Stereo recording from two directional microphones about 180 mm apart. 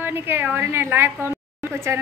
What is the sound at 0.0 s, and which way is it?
A woman's voice, 10° right (ahead or behind).